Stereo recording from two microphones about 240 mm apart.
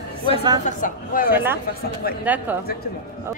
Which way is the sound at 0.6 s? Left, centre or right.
Left.